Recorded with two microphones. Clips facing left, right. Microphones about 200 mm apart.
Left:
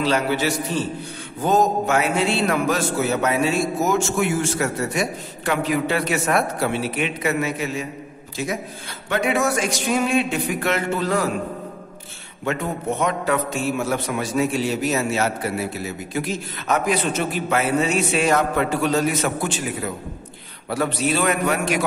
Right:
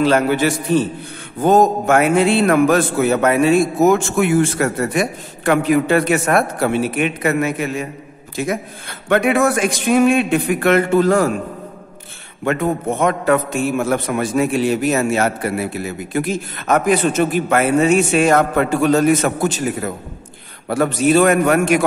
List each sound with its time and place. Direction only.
0.0 s a man's voice: 55° right (ahead or behind)
12.4 s a man's voice: 50° right (ahead or behind)